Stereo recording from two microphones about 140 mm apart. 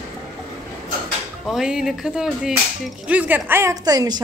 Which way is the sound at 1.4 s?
5° right (ahead or behind).